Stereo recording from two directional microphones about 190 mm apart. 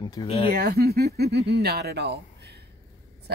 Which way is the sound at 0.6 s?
55° right (ahead or behind).